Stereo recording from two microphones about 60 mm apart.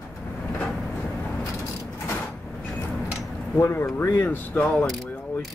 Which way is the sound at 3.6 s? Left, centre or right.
Left.